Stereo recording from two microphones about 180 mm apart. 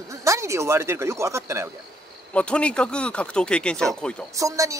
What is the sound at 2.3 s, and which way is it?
Speech, 5° left (ahead or behind).